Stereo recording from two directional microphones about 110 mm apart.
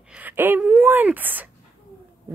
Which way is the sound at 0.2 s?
15° right (ahead or behind).